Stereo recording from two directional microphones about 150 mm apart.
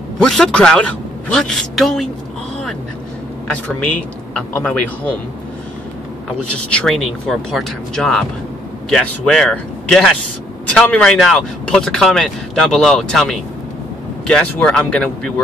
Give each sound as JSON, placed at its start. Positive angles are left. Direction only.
{"t": 0.2, "sound": "speech", "side_deg": 5}
{"t": 3.4, "sound": "a man's voice", "side_deg": 10}
{"t": 6.7, "sound": "speech", "side_deg": 5}